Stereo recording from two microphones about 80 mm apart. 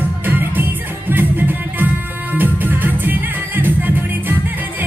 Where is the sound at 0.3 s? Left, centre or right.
Right.